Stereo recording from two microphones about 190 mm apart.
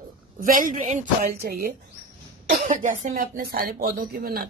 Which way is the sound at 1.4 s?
55° right (ahead or behind).